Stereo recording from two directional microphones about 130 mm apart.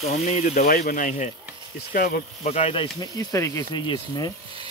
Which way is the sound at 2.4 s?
55° left (ahead or behind).